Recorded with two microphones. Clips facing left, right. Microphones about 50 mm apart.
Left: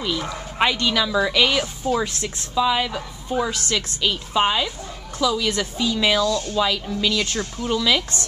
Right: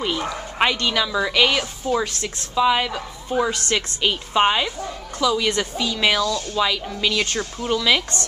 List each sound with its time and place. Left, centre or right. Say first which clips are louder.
0.0 s speech: right 2 dB; right
0.6 s a woman's voice: even; centre
6.5 s a woman's voice: even; centre
7.0 s speech: right 2 dB; centre